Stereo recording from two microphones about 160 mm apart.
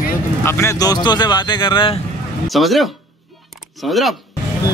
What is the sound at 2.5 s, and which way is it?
Speech, centre (ahead or behind).